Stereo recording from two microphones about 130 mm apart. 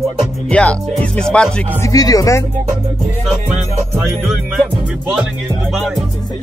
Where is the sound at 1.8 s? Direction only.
30° left (ahead or behind).